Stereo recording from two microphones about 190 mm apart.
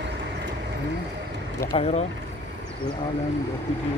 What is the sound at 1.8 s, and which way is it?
Speech, 30° left (ahead or behind).